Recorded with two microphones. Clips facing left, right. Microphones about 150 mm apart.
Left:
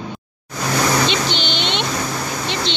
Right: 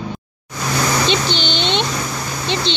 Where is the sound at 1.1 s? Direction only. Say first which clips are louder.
Right 2 dB; 30° right (ahead or behind).